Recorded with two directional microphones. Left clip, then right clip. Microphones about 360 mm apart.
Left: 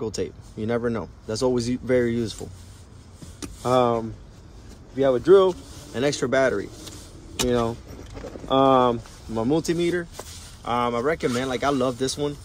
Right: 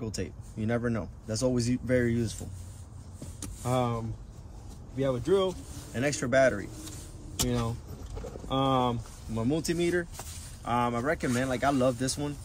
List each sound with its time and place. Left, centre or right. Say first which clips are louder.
0.0 s speech: left 9 dB; centre
3.6 s speech: left 10 dB; centre
7.4 s speech: left 11 dB; centre